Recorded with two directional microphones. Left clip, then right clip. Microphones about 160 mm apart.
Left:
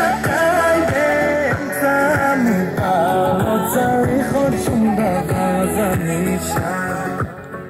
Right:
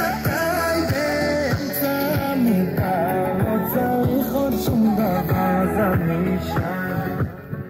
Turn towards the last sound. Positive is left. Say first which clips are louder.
# left 2 dB
turn(degrees=-25)  # may be behind; listen again after turning